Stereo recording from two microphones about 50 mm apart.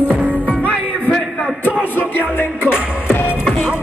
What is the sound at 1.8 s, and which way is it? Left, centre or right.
Music, left.